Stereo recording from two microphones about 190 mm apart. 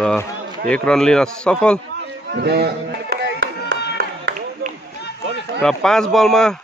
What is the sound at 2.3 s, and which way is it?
Music, 60° right (ahead or behind).